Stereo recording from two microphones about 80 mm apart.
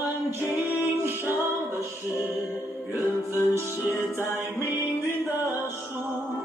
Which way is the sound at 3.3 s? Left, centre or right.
Left.